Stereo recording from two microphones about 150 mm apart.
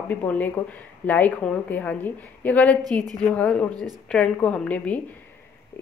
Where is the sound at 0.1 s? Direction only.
10° left (ahead or behind).